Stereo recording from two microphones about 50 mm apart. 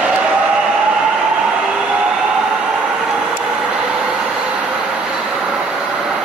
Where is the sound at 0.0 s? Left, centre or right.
Right.